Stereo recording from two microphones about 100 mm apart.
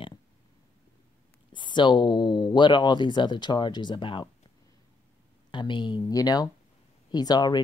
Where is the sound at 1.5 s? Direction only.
55° left (ahead or behind).